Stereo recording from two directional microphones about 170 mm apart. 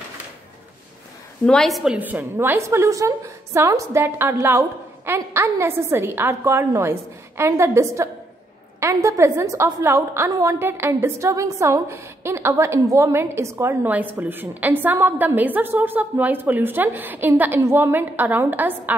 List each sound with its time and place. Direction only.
1.4 s a woman's voice: 5° left (ahead or behind)